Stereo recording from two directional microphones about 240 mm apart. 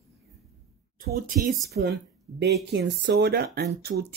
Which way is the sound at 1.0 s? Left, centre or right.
Right.